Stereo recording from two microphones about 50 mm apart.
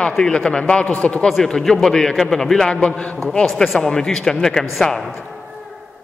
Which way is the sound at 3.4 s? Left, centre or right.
Centre.